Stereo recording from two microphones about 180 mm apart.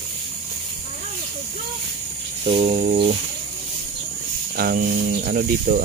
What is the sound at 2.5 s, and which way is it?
Speech, 30° right (ahead or behind).